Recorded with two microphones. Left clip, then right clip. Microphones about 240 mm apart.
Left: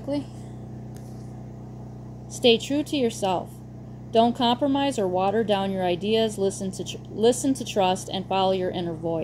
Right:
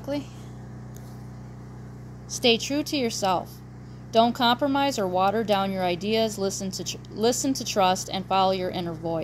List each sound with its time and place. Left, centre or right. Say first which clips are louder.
2.3 s speech: left 2 dB; right